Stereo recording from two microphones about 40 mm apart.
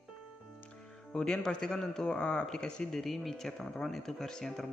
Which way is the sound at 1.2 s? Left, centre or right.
Centre.